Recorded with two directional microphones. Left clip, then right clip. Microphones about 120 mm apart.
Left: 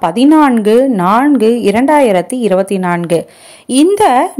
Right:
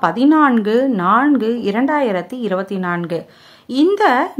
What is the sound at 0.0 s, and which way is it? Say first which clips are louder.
A woman's voice: left 4 dB; 35° left (ahead or behind).